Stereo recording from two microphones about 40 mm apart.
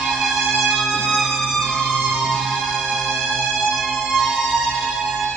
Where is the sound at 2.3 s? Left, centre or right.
Centre.